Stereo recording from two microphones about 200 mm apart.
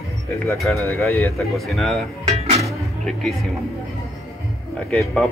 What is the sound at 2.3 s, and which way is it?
Music, 30° right (ahead or behind).